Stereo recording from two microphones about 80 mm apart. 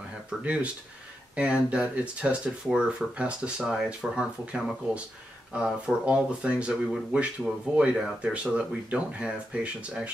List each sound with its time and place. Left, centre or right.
0.4 s speech: centre